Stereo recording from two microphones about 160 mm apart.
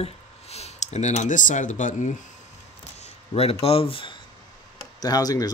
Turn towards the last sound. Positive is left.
turn(degrees=25)  # may be behind; listen again after turning